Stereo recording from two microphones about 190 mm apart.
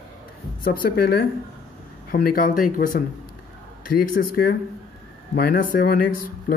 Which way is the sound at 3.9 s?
50° left (ahead or behind).